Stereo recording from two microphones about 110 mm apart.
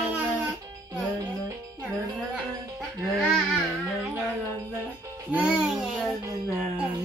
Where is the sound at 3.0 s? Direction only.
Centre (ahead or behind).